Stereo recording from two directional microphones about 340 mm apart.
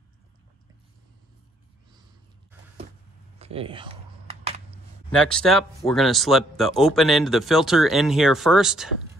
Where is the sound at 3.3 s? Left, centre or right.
Centre.